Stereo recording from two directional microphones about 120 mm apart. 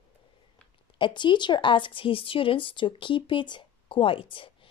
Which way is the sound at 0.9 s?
40° left (ahead or behind).